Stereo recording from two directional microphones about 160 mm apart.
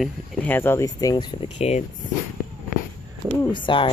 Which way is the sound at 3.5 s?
30° left (ahead or behind).